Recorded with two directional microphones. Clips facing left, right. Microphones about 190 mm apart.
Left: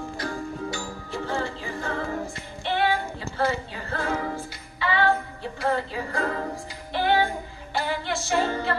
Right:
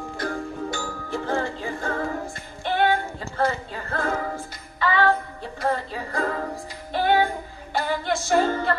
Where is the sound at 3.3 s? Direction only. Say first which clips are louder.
Right 1 dB; 50° right (ahead or behind).